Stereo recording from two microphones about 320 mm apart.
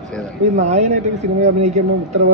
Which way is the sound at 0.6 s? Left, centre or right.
Right.